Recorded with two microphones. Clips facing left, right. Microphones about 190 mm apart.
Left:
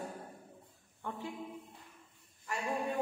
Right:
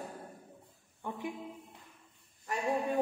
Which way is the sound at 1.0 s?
15° right (ahead or behind).